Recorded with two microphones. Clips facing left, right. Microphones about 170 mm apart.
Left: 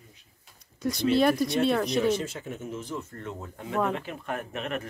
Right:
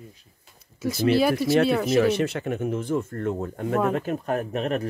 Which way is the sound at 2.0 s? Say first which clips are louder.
Right 5 dB; 70° right (ahead or behind).